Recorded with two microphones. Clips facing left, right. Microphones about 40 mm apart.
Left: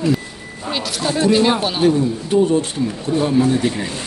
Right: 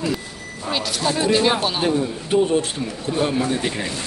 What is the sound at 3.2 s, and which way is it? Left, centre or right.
Speech, right.